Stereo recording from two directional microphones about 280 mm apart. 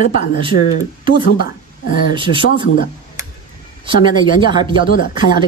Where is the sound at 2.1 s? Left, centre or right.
Centre.